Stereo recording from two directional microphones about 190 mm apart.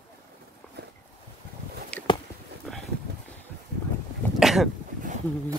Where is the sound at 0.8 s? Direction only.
60° right (ahead or behind).